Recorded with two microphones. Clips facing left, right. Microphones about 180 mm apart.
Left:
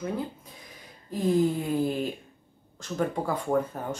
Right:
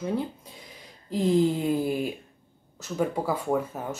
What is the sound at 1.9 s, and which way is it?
Speech, 10° right (ahead or behind).